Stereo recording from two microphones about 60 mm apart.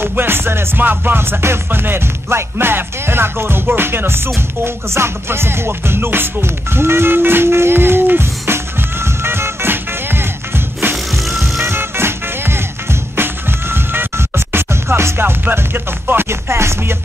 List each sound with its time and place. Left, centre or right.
0.0 s music: right
11.2 s vehicle: centre
11.6 s music: right